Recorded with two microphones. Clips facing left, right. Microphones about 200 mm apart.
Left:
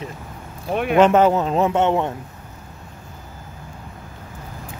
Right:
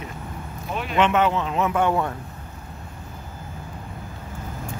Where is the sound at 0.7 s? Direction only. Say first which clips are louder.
Left 9 dB; 55° left (ahead or behind).